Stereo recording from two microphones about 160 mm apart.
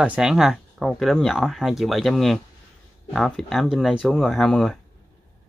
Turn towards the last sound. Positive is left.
turn(degrees=5)  # may be behind; listen again after turning